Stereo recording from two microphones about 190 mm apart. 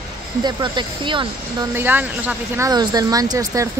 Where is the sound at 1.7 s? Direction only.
10° right (ahead or behind).